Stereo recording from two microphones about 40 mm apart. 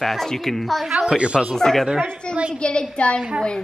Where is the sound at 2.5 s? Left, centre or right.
Left.